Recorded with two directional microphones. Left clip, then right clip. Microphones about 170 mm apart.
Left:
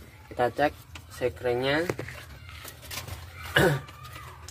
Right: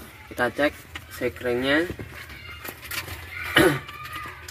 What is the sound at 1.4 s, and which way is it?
Speech, 15° right (ahead or behind).